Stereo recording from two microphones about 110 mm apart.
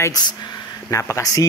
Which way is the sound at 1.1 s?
30° left (ahead or behind).